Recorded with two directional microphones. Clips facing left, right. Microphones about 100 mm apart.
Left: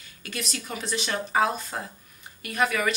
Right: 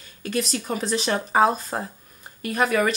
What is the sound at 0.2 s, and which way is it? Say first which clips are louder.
Speech: right 9 dB; 35° right (ahead or behind).